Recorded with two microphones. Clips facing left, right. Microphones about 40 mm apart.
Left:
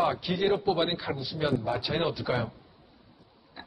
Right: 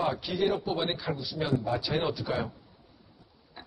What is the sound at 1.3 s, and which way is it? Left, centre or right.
A man's voice, centre.